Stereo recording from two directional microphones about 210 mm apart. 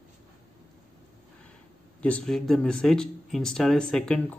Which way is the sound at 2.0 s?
5° left (ahead or behind).